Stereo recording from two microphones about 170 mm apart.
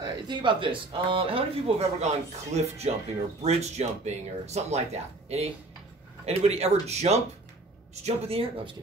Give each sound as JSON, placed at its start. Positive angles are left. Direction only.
{"t": 0.0, "sound": "speech", "side_deg": -25}